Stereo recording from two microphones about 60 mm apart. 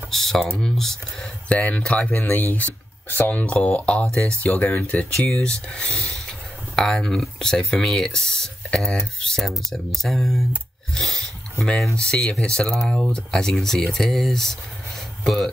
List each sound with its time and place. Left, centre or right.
0.1 s speech: centre
1.5 s speech: left
2.1 s speech: left; by 8.9 s centre
9.4 s speech: centre